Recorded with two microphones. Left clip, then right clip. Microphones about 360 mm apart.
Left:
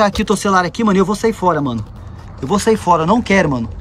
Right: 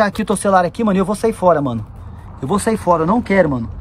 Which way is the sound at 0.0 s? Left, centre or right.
Centre.